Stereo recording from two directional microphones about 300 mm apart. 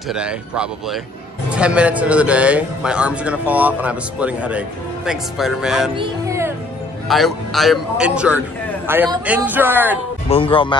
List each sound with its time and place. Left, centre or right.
0.1 s a man's voice: centre
5.9 s music: centre
7.1 s a man's voice: centre
10.3 s speech: centre